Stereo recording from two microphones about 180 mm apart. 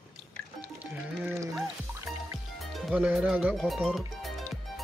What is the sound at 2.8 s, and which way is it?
Music, 5° right (ahead or behind).